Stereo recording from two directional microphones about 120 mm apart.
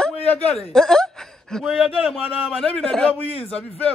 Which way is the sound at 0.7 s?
5° left (ahead or behind).